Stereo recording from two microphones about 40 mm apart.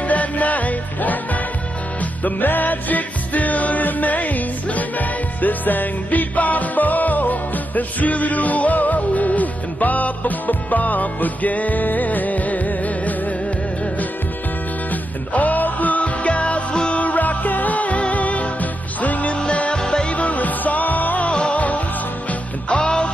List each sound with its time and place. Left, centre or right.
0.1 s music: left
15.3 s music: left
17.0 s music: left
19.3 s music: left
20.2 s music: left
21.3 s music: left
22.7 s music: left